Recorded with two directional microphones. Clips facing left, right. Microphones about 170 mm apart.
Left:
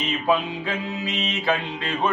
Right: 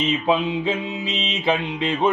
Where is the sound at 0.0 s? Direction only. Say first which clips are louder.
Right 2 dB; 20° right (ahead or behind).